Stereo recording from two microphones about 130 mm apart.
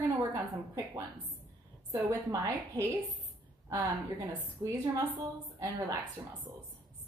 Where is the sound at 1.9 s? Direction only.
25° right (ahead or behind).